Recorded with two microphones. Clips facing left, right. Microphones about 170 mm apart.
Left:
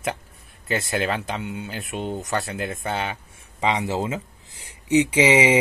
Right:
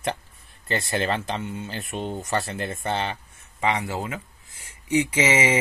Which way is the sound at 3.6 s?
20° left (ahead or behind).